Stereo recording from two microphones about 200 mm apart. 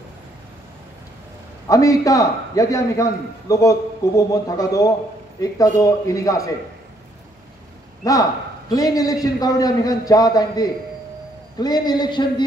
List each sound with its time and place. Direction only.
1.7 s a man's voice: 15° left (ahead or behind)
8.0 s a man's voice: 15° left (ahead or behind)